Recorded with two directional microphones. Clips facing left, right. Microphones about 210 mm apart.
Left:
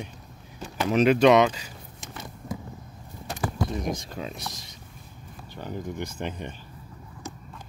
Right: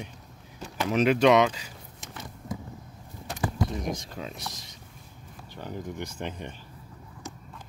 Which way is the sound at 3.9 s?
10° left (ahead or behind).